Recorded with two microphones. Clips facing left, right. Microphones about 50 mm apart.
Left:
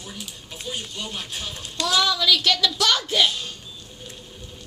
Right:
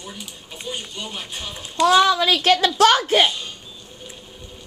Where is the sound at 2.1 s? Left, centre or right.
Right.